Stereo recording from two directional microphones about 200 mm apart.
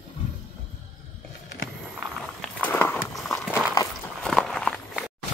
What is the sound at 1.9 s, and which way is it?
Walk, 5° left (ahead or behind).